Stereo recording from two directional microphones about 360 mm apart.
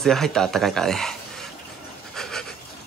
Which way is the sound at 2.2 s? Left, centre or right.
Centre.